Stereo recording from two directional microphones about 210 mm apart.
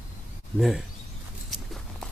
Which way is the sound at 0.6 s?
Centre (ahead or behind).